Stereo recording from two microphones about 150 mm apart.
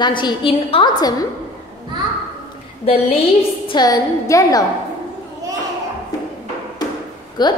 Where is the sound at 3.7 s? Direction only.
25° left (ahead or behind).